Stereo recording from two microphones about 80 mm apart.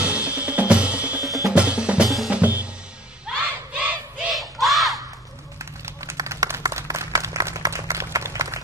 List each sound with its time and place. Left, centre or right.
0.0 s drum kit: centre
1.5 s drum: centre
3.3 s music: centre
3.7 s battle cry: centre
4.3 s a sound: centre
6.1 s applause: right